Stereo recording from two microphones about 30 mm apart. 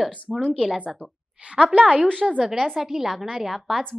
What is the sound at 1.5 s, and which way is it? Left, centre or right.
Speech, right.